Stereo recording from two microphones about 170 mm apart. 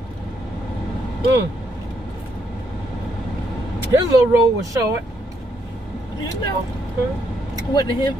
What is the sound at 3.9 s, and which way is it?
Speech, 15° right (ahead or behind).